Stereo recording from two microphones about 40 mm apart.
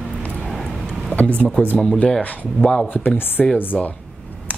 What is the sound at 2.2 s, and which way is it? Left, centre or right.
Speech, left.